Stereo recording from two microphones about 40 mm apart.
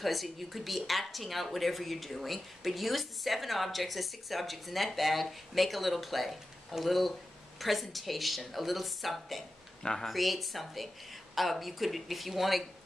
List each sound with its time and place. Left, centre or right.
0.0 s speech: centre